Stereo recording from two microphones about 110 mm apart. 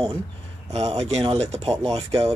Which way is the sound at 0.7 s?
75° right (ahead or behind).